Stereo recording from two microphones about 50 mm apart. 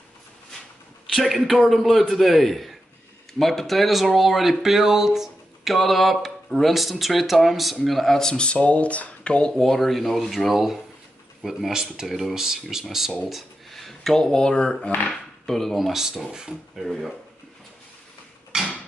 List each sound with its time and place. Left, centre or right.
1.1 s speech: centre; by 9.5 s left
9.5 s speech: centre
16.7 s speech: centre
18.5 s a sound: centre